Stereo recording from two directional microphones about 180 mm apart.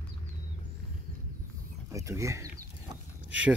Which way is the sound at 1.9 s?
15° right (ahead or behind).